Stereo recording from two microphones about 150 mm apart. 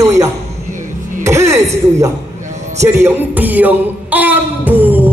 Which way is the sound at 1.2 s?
20° right (ahead or behind).